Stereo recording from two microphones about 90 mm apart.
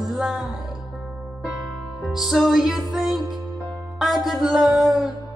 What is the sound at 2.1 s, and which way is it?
Music, centre (ahead or behind).